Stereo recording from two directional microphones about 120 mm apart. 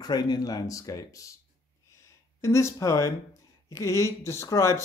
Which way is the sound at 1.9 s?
25° left (ahead or behind).